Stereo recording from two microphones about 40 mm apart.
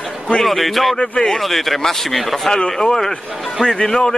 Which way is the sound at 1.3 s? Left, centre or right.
Centre.